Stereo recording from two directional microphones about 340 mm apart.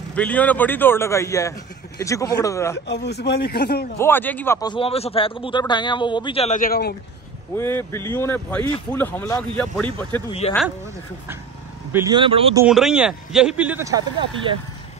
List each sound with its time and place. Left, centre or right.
0.1 s speech: centre
2.9 s speech: left
4.0 s speech: centre; by 7.0 s left
7.5 s speech: centre
10.4 s speech: centre
11.9 s speech: centre
12.6 s speech: centre